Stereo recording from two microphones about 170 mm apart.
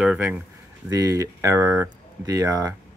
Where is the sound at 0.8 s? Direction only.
20° right (ahead or behind).